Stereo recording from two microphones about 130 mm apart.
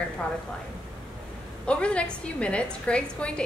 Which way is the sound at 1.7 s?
10° left (ahead or behind).